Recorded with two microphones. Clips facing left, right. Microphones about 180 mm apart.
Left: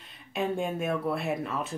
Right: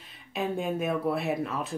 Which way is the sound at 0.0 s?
Centre (ahead or behind).